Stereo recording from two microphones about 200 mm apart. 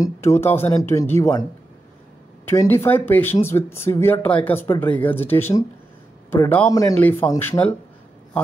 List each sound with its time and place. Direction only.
0.0 s speech: 15° left (ahead or behind)
2.5 s speech: 15° left (ahead or behind)